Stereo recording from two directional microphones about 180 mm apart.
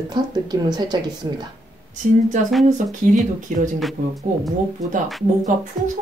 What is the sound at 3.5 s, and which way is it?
Speech, 45° right (ahead or behind).